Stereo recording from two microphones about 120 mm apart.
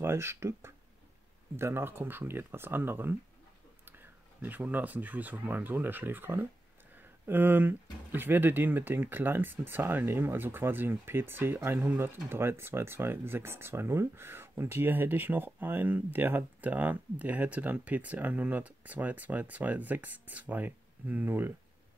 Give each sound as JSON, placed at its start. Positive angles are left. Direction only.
{"t": 0.0, "sound": "speech", "side_deg": -20}